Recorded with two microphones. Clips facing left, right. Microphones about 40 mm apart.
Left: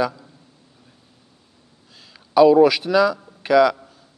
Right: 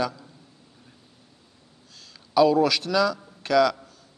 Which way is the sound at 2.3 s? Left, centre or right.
Centre.